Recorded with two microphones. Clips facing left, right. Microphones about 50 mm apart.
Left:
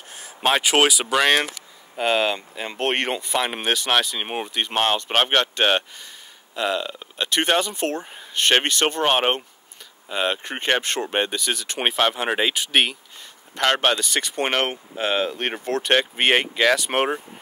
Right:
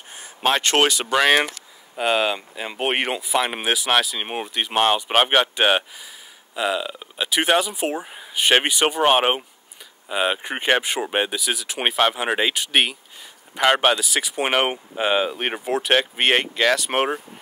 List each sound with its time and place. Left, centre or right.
0.1 s speech: centre